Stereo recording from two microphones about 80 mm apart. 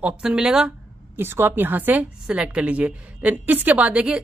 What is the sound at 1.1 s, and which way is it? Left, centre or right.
Speech, right.